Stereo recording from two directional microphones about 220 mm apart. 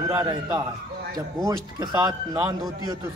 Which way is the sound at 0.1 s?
15° right (ahead or behind).